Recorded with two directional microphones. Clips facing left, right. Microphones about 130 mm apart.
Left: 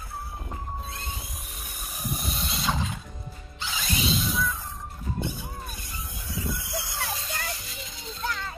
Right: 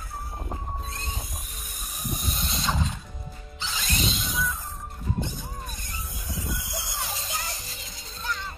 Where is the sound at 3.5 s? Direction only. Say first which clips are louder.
Even; 5° left (ahead or behind).